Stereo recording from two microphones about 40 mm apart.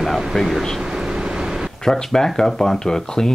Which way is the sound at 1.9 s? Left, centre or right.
Centre.